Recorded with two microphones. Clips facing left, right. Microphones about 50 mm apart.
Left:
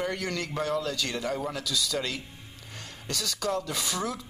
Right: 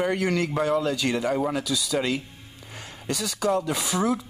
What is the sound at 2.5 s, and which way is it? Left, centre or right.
Speech, centre.